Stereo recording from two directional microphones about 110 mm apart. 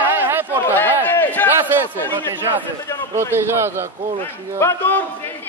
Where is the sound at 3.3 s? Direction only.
20° right (ahead or behind).